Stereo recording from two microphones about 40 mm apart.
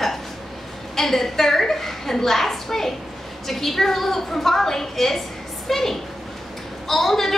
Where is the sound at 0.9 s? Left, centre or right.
Centre.